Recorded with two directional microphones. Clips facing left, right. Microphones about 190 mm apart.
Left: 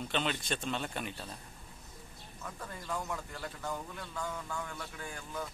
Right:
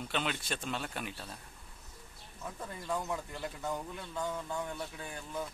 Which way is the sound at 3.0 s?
20° right (ahead or behind).